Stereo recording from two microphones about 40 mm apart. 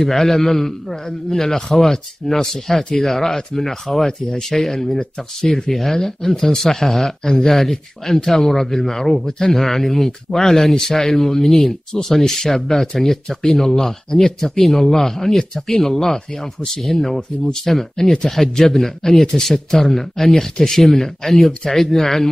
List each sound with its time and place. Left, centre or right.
0.0 s a man's voice: centre